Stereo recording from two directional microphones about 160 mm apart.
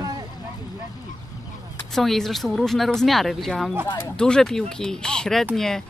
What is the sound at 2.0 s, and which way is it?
Speech, centre (ahead or behind).